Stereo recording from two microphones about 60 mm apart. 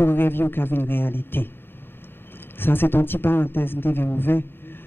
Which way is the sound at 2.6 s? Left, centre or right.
Left.